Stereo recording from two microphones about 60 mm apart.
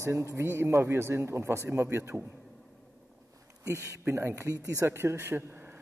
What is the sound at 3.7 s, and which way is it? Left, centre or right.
Speech, right.